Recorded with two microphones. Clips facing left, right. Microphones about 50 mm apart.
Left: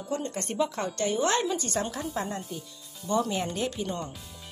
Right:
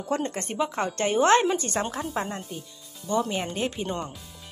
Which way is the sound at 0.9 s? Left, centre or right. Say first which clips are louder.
Right 7 dB; right.